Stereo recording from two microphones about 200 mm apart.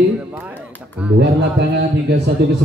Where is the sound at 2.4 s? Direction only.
60° right (ahead or behind).